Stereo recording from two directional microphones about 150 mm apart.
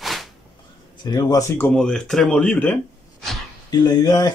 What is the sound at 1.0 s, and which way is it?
Speech, 25° left (ahead or behind).